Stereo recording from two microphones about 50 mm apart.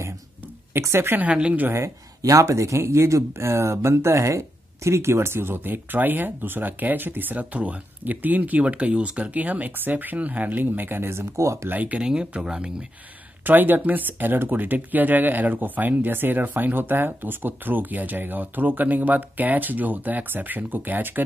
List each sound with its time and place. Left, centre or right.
0.7 s speech: right
1.3 s speech: right
2.4 s speech: right
11.7 s speech: right
12.0 s speech: centre
13.4 s speech: right